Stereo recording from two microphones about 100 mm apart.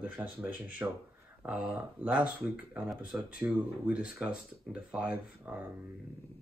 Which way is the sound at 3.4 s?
15° right (ahead or behind).